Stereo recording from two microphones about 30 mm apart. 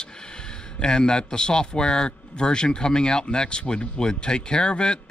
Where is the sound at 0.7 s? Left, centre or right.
Left.